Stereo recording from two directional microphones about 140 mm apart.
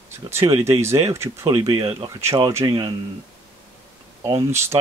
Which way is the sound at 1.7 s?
40° right (ahead or behind).